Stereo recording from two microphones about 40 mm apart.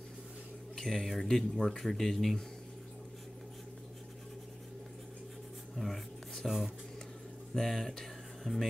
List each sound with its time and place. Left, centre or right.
0.7 s speech: centre
5.8 s writing: centre
7.5 s speech: centre
8.5 s speech: centre